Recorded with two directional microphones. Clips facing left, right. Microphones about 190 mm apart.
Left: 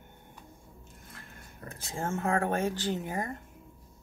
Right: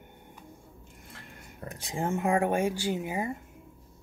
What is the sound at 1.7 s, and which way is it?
Speech, 15° right (ahead or behind).